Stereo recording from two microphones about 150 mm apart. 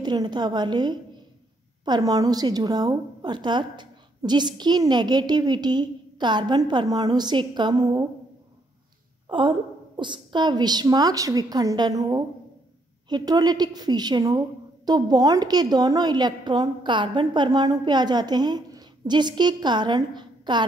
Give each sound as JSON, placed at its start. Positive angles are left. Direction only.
{"t": 0.0, "sound": "a woman's voice", "side_deg": -30}
{"t": 9.3, "sound": "a woman's voice", "side_deg": -35}